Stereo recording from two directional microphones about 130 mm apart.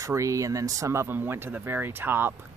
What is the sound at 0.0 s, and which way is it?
Speech, 25° right (ahead or behind).